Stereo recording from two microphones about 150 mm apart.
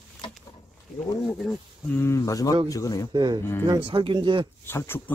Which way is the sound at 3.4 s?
15° left (ahead or behind).